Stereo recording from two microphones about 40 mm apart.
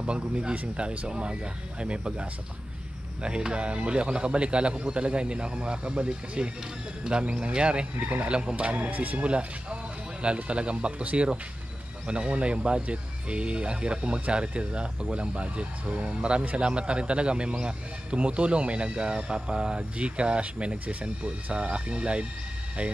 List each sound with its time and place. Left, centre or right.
0.0 s a man's voice: right